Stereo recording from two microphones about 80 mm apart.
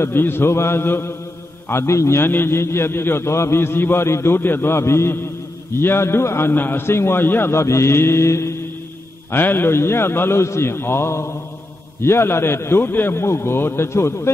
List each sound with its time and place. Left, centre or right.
0.0 s a man's voice: left